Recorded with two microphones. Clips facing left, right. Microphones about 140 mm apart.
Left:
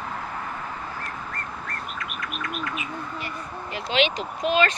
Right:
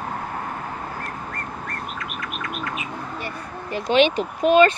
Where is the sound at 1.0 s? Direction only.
Centre (ahead or behind).